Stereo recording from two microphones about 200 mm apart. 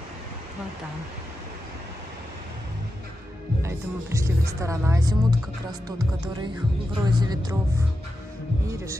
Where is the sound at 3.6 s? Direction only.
15° right (ahead or behind).